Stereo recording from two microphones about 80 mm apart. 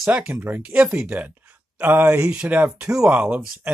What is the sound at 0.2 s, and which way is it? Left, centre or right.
Speech, right.